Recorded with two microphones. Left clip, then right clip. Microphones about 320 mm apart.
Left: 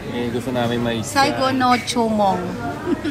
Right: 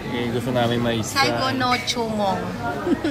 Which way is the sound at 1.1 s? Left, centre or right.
Centre.